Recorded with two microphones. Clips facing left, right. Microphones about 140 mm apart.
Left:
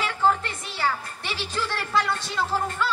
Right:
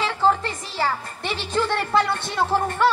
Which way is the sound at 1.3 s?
55° right (ahead or behind).